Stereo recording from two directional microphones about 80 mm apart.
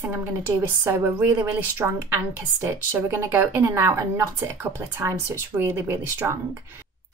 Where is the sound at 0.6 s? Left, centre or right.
Right.